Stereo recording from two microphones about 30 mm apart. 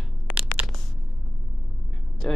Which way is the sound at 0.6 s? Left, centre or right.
Right.